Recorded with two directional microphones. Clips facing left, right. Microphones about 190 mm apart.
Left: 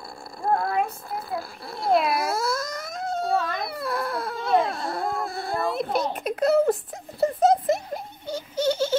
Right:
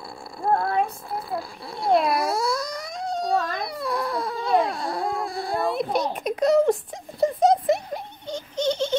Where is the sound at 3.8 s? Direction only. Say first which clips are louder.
Right 3 dB; 55° left (ahead or behind).